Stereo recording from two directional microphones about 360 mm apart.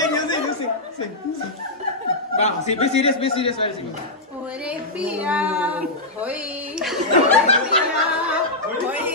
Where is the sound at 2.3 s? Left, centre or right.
Centre.